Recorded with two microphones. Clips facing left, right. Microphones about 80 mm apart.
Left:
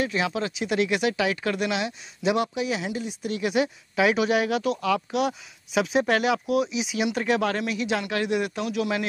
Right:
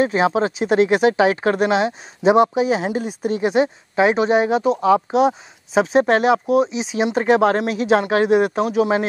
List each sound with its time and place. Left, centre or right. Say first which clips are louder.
0.0 s speech: right 9 dB; right